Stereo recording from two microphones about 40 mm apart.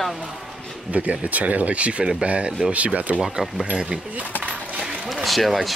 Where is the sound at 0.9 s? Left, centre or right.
Right.